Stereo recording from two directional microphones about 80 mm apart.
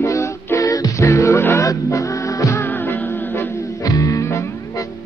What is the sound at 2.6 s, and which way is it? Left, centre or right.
Music, left.